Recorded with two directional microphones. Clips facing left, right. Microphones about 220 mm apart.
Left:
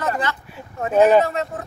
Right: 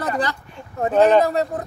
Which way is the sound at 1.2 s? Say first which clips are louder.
Right 4 dB; 35° right (ahead or behind).